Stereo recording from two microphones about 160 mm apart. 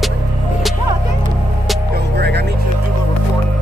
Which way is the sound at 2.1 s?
90° right.